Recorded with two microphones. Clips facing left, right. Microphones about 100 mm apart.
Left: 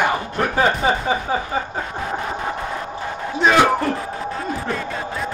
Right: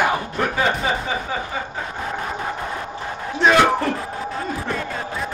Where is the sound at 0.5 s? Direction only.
30° left (ahead or behind).